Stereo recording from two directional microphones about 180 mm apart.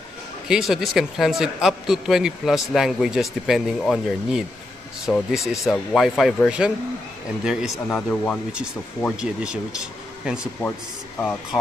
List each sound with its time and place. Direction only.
0.5 s a man's voice: centre (ahead or behind)
5.4 s speech: 15° left (ahead or behind)
5.7 s a man's voice: centre (ahead or behind)
7.9 s speech: 10° left (ahead or behind)
8.5 s a man's voice: 5° right (ahead or behind)